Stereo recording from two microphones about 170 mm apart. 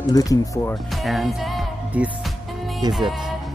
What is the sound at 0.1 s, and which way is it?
Speech, 20° left (ahead or behind).